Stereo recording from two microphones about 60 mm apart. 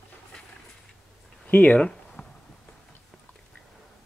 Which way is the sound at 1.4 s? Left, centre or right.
Left.